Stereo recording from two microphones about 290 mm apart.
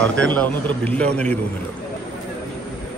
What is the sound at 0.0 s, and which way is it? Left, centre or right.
A man's voice, centre.